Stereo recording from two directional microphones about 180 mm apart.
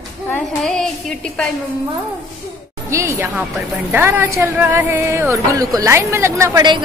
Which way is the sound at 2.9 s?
15° right (ahead or behind).